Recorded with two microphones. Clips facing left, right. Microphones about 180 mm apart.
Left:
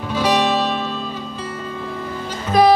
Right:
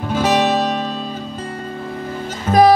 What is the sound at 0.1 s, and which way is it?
Music, 45° right (ahead or behind).